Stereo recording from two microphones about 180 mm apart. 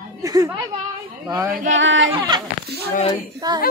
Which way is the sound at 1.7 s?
90° right.